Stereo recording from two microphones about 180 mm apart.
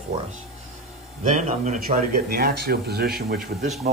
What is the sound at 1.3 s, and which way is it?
Speech, 45° right (ahead or behind).